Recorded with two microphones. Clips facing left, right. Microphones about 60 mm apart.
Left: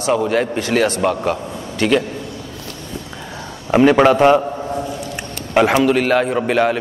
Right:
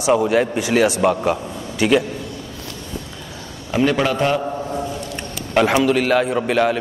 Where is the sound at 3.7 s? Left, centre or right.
Left.